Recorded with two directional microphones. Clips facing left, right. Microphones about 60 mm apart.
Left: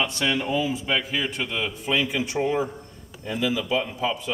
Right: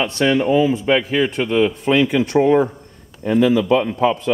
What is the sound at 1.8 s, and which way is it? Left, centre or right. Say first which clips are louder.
A man's voice: right 9 dB; right.